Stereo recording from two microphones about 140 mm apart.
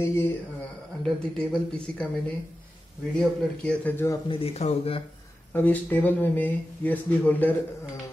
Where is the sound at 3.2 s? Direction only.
10° left (ahead or behind).